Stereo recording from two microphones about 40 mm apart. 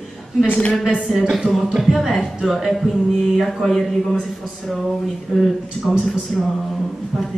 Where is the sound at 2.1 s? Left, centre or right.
Centre.